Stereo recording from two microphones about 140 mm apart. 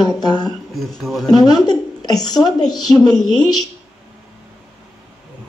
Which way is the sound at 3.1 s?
5° left (ahead or behind).